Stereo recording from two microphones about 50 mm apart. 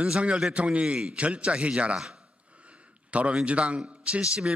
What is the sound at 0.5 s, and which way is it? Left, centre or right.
A man's voice, right.